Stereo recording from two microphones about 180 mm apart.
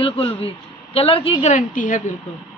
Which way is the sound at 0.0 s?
30° left (ahead or behind).